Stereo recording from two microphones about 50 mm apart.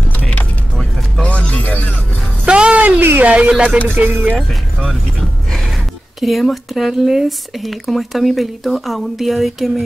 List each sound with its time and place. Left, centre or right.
0.2 s music: left
2.4 s music: right
3.0 s a sound: right
3.3 s speech: right
4.0 s speech: right
6.2 s speech: centre